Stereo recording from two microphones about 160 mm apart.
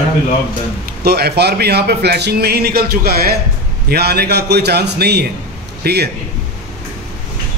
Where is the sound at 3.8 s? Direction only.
85° right.